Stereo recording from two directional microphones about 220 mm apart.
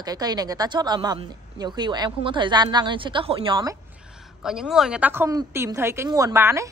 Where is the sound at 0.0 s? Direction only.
15° right (ahead or behind).